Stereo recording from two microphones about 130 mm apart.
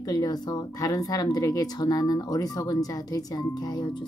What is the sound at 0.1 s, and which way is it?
Speech, 30° left (ahead or behind).